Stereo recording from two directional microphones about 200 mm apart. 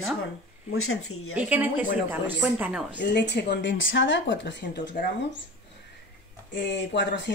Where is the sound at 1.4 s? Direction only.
10° right (ahead or behind).